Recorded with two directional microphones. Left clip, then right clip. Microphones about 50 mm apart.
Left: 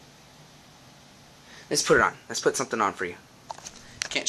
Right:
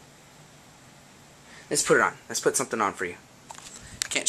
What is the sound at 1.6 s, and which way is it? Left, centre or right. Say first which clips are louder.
Speech: left 1 dB; left.